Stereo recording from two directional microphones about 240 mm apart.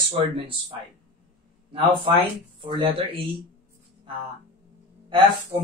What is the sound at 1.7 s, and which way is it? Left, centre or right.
Speech, right.